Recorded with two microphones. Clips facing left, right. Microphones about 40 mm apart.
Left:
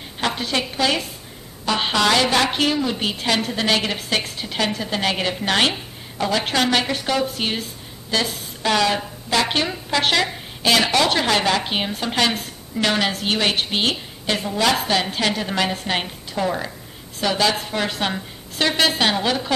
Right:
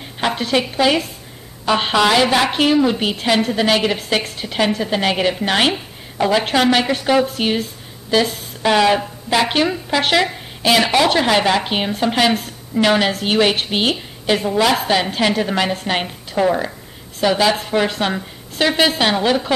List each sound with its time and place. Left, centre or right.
0.2 s speech: centre
5.7 s a sound: centre
6.4 s speech: centre